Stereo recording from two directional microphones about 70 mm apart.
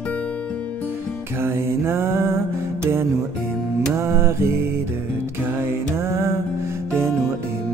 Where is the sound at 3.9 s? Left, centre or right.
Right.